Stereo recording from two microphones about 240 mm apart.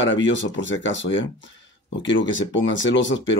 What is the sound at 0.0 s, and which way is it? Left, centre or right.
Speech, left.